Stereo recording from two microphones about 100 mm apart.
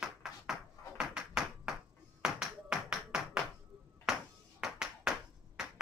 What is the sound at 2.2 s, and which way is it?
Tap, 5° right (ahead or behind).